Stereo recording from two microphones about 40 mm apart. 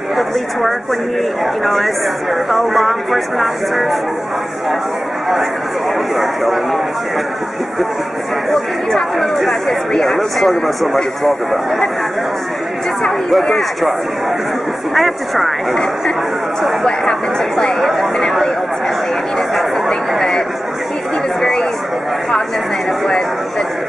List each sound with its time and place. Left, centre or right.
0.1 s speech: centre
6.1 s speech: centre
8.5 s speech: centre
15.0 s speech: centre
17.7 s speech: centre
19.9 s a sound: centre